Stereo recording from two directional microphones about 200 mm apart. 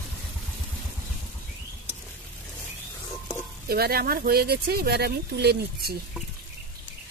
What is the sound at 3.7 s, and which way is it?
Speech, 50° right (ahead or behind).